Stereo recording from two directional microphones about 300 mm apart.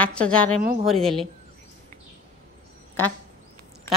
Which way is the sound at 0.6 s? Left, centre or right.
Right.